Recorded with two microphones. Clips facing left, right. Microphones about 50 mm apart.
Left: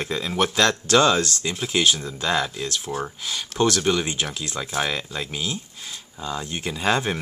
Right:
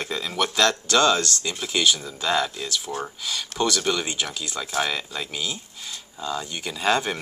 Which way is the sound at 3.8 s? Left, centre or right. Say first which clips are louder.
Left 3 dB; centre.